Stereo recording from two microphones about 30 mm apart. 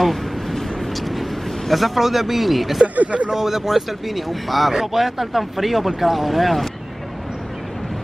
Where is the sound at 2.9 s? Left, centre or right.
Right.